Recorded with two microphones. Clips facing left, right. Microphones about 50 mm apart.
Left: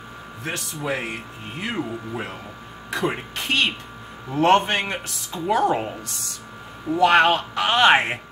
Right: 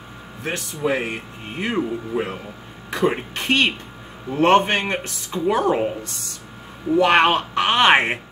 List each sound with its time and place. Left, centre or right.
0.4 s speech: centre
1.6 s speech: centre
2.9 s speech: centre
5.3 s speech: centre
6.0 s speech: centre
7.0 s speech: centre